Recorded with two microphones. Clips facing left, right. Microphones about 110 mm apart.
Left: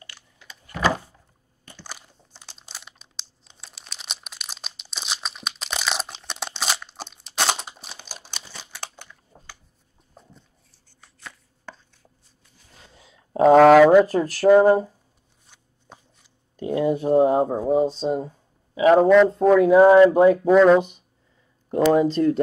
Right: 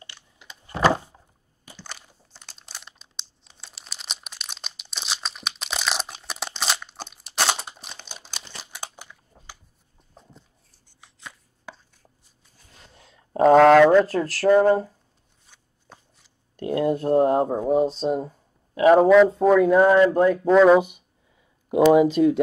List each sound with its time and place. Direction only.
0.0 s power windows: 20° right (ahead or behind)
1.8 s a sound: 10° left (ahead or behind)
2.3 s crumpling: centre (ahead or behind)
8.7 s typing: 10° right (ahead or behind)
11.1 s chopping: 10° right (ahead or behind)
12.8 s a sound: centre (ahead or behind)
16.2 s speech: centre (ahead or behind)
20.1 s a sound: 15° left (ahead or behind)
20.5 s speech: 5° right (ahead or behind)